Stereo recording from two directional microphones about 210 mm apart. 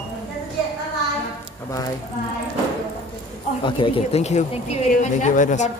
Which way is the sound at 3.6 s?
25° left (ahead or behind).